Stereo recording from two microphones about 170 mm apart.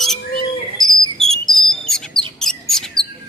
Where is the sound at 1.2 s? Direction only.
Centre (ahead or behind).